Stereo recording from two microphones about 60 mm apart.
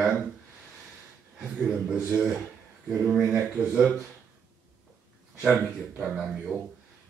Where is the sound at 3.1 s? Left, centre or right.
Centre.